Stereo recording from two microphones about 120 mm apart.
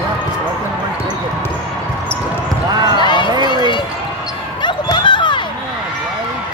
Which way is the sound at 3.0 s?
40° left (ahead or behind).